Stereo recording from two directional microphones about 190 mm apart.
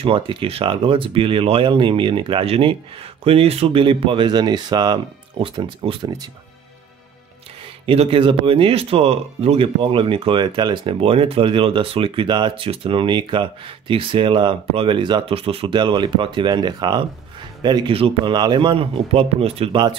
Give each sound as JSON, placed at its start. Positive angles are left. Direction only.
{"t": 0.0, "sound": "speech", "side_deg": -30}
{"t": 7.8, "sound": "speech", "side_deg": -30}